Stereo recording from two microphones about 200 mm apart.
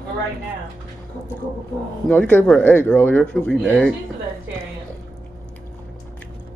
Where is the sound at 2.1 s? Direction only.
5° left (ahead or behind).